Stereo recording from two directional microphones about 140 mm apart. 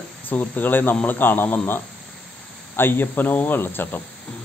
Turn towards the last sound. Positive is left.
turn(degrees=15)  # may be behind; listen again after turning